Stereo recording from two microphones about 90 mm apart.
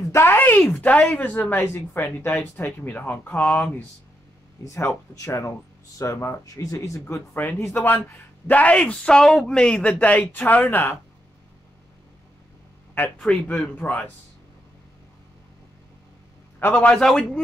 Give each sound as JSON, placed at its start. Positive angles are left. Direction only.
{"t": 0.1, "sound": "speech", "side_deg": 25}
{"t": 4.6, "sound": "speech", "side_deg": 35}
{"t": 6.4, "sound": "speech", "side_deg": 40}
{"t": 7.3, "sound": "speech", "side_deg": 20}
{"t": 13.2, "sound": "speech", "side_deg": 10}
{"t": 16.5, "sound": "a man's voice", "side_deg": 20}
{"t": 17.0, "sound": "a man's voice", "side_deg": 5}